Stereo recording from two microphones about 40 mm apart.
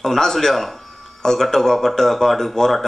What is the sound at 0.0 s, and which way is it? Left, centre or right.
Speech, centre.